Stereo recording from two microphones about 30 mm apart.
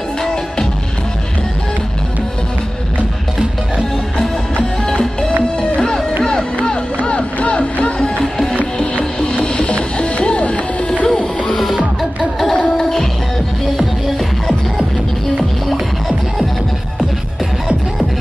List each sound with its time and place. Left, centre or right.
0.2 s music: centre
5.6 s music: left
7.0 s music: left
8.9 s music: left
15.3 s music: centre